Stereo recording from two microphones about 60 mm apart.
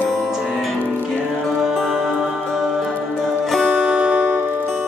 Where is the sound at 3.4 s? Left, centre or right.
Centre.